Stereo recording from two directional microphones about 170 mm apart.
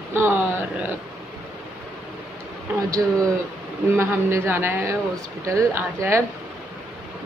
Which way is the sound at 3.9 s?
15° right (ahead or behind).